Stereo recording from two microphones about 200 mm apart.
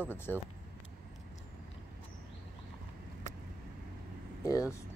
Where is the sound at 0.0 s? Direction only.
10° left (ahead or behind).